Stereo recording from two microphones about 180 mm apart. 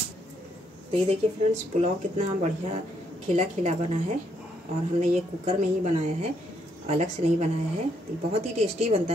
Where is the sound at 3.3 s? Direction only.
40° right (ahead or behind).